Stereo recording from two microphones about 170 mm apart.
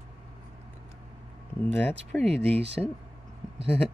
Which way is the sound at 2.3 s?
35° right (ahead or behind).